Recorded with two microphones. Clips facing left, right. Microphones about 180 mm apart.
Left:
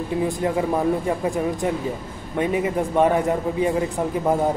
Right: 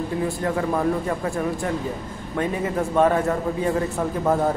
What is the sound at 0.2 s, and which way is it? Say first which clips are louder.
Speech: left 3 dB; 15° left (ahead or behind).